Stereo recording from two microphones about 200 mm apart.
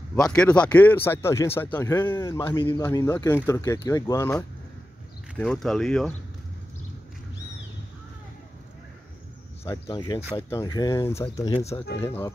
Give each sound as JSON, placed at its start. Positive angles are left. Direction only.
{"t": 0.1, "sound": "speech", "side_deg": 10}
{"t": 5.3, "sound": "speech", "side_deg": 5}
{"t": 9.7, "sound": "speech", "side_deg": 20}